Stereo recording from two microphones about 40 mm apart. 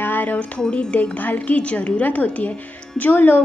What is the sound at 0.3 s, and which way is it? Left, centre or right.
Speech, left.